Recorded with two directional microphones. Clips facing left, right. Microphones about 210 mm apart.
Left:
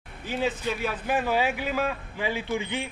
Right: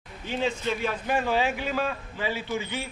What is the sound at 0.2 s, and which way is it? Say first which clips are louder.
A man's voice: even; 5° left (ahead or behind).